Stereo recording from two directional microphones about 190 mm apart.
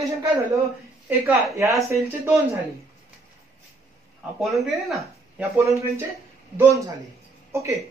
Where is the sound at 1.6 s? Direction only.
15° right (ahead or behind).